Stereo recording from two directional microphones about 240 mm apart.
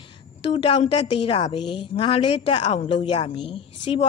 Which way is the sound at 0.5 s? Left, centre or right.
Left.